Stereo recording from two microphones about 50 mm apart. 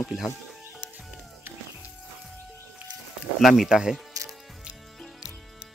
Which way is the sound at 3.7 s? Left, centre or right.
Centre.